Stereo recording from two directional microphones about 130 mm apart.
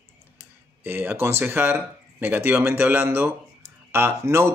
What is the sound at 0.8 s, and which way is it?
Speech, 15° right (ahead or behind).